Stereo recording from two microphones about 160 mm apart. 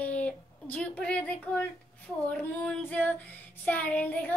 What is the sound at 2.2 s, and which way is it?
A woman's voice, 10° left (ahead or behind).